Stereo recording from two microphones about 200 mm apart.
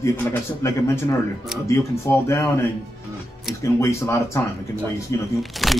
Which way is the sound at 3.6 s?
15° left (ahead or behind).